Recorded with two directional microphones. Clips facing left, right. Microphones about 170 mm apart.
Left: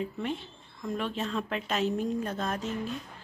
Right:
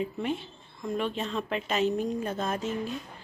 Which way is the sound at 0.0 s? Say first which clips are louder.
Right 2 dB; 5° right (ahead or behind).